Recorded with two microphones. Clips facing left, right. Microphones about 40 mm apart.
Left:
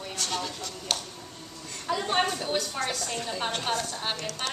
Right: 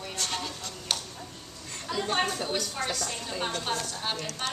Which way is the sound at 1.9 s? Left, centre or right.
Centre.